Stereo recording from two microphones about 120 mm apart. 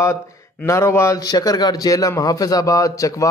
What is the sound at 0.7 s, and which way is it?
A man's voice, 20° left (ahead or behind).